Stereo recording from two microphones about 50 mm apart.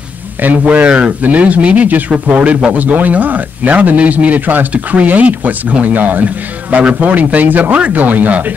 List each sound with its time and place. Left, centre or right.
0.4 s a man's voice: right